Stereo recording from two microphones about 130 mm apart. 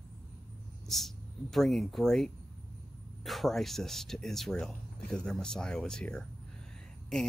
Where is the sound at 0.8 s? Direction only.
Centre (ahead or behind).